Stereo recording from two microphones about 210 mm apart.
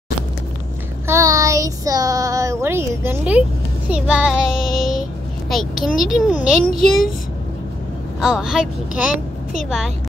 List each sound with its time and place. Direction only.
1.0 s child singing: 15° right (ahead or behind)
5.5 s a child's voice: centre (ahead or behind)
8.2 s a child's voice: centre (ahead or behind)